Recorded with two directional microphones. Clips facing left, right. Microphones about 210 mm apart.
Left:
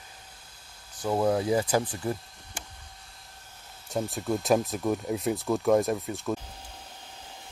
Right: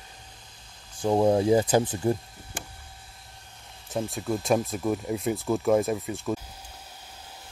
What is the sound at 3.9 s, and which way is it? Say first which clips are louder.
Speech: even; centre (ahead or behind).